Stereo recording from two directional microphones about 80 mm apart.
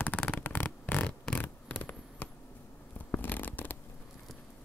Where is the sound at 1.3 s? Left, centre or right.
Left.